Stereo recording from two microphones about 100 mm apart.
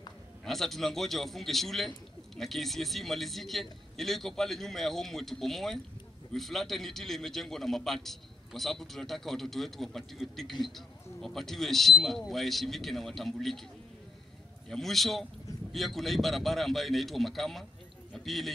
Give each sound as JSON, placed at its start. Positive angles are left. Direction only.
{"t": 0.5, "sound": "a man's voice", "side_deg": 0}
{"t": 14.7, "sound": "a man's voice", "side_deg": 0}